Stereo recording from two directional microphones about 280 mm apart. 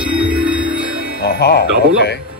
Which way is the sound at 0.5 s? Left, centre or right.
Centre.